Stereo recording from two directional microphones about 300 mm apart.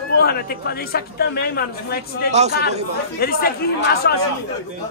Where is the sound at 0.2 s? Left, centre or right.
Left.